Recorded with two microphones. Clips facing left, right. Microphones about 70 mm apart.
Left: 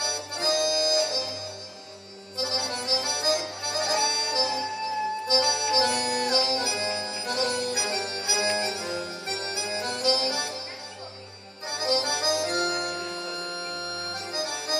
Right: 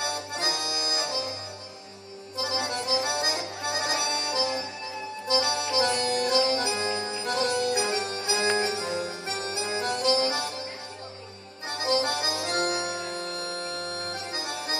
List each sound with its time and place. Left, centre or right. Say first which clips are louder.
0.0 s accordion: even; right
2.5 s music: right 3 dB; right
8.5 s harpsichord: right 2 dB; right
9.5 s music: right 4 dB; right
11.8 s music: even; right